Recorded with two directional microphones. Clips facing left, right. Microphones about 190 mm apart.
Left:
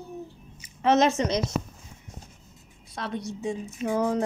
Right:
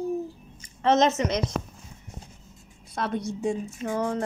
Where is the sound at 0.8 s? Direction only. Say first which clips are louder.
Even; 10° left (ahead or behind).